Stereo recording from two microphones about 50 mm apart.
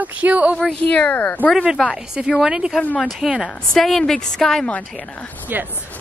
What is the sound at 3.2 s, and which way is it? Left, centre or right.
A woman's voice, centre.